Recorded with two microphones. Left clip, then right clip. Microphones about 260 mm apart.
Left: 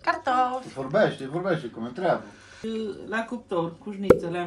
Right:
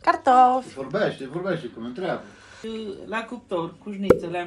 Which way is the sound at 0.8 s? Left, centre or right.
Left.